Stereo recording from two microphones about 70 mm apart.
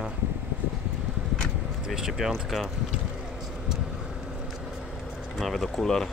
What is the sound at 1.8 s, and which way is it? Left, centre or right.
Speech, centre.